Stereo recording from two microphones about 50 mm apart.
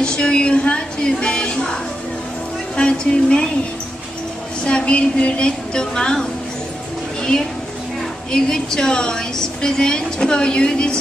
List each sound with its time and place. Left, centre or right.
0.0 s a woman's voice: centre
2.7 s a woman's voice: centre
4.6 s a woman's voice: left
7.2 s a sound: centre
8.3 s a woman's voice: centre